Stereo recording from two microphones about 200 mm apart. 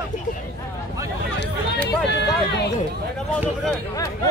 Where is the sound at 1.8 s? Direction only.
55° left (ahead or behind).